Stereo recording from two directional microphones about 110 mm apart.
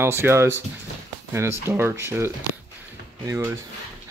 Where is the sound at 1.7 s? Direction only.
20° right (ahead or behind).